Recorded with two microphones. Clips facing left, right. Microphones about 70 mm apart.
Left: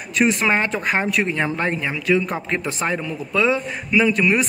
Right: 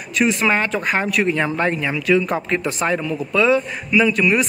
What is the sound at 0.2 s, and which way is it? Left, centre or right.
A man's voice, left.